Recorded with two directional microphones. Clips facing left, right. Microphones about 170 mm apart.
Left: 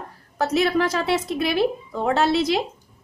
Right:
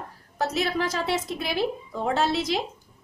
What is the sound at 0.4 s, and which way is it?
A woman's voice, 60° left (ahead or behind).